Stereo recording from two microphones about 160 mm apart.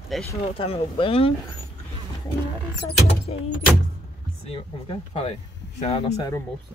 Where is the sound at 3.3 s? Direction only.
40° left (ahead or behind).